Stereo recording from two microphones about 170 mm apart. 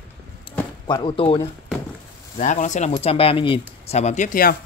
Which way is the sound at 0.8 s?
30° left (ahead or behind).